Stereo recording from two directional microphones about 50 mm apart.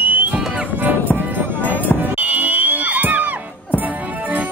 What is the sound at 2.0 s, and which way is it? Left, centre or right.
Music, right.